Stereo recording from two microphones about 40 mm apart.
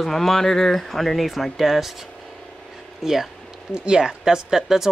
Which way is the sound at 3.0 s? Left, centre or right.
Centre.